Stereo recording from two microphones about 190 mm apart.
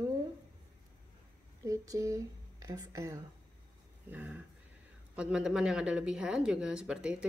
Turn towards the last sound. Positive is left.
turn(degrees=-5)  # may be behind; listen again after turning